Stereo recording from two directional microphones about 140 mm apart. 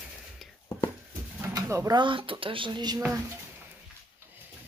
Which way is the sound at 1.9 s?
35° right (ahead or behind).